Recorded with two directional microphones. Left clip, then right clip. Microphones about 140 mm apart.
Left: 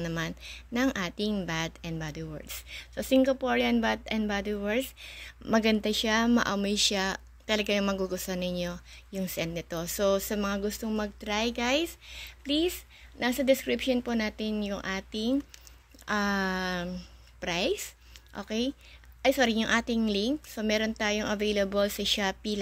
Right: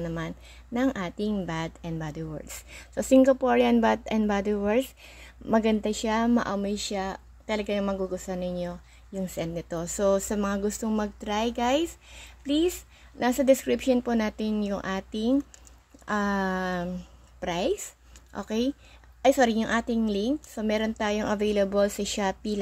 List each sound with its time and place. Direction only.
0.0 s a woman's voice: 15° right (ahead or behind)
18.3 s a woman's voice: 40° right (ahead or behind)